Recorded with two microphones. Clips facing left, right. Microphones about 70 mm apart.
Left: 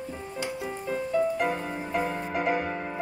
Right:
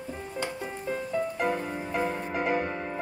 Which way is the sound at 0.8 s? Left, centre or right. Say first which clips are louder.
Left 4 dB; centre.